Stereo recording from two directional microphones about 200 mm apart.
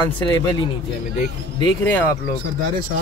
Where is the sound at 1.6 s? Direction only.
10° left (ahead or behind).